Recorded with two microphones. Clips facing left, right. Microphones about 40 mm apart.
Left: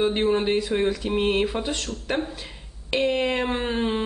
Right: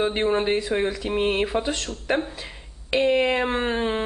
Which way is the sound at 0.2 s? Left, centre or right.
Centre.